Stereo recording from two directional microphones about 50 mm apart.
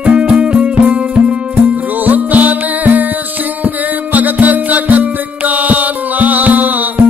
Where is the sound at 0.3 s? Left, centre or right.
Right.